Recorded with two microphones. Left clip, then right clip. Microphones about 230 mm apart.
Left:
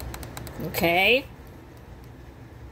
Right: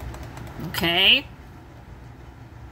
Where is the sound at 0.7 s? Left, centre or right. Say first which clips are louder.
Right 2 dB; right.